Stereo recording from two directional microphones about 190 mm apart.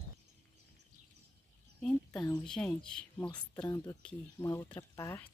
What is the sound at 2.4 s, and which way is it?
Speech, 5° left (ahead or behind).